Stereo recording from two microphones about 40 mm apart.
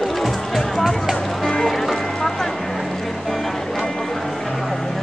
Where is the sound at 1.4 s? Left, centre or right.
Centre.